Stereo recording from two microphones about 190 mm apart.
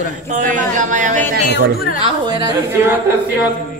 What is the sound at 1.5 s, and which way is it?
Speech, 50° left (ahead or behind).